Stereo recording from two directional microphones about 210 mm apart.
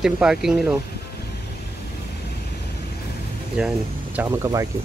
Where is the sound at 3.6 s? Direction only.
5° right (ahead or behind).